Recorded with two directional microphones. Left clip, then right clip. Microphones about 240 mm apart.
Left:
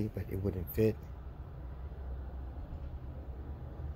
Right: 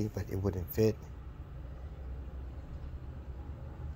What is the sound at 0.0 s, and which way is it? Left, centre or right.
Speech, centre.